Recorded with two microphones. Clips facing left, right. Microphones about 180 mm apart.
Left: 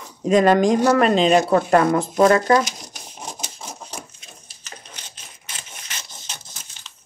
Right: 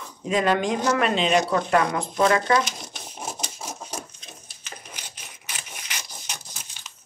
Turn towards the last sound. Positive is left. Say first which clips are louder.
# right 1 dB
turn(degrees=-15)  # may be behind; listen again after turning